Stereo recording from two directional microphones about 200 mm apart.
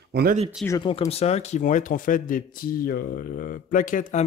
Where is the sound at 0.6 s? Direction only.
20° left (ahead or behind).